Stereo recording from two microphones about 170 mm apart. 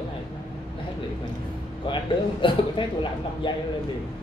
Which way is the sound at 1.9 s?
30° left (ahead or behind).